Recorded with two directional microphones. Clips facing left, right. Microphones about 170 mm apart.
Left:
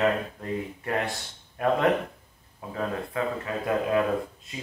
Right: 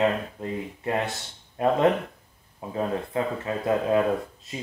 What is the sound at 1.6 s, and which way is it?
A man's voice, 25° right (ahead or behind).